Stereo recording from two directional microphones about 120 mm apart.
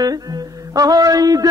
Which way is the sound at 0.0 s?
30° right (ahead or behind).